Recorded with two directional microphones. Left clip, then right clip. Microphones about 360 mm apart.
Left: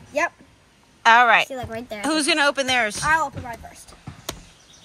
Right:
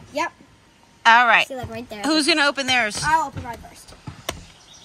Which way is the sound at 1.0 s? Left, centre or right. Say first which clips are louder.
Even; centre.